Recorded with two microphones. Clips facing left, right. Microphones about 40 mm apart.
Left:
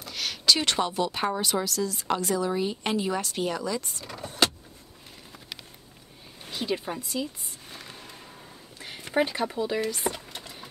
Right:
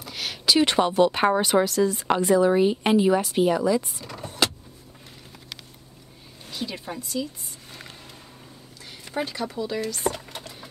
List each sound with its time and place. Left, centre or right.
0.0 s a sound: centre
0.9 s a woman's voice: right; by 4.0 s centre
4.0 s vehicle: centre
6.4 s speech: centre
8.8 s a sound: left
9.5 s speech: centre
10.4 s sewing machine: centre